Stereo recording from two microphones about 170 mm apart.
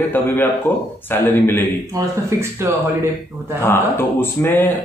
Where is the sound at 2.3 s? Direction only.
15° right (ahead or behind).